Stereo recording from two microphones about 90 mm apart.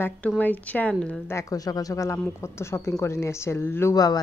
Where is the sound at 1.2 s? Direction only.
35° left (ahead or behind).